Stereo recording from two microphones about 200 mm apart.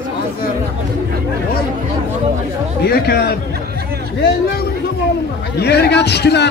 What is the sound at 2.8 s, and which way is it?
Speech, 50° left (ahead or behind).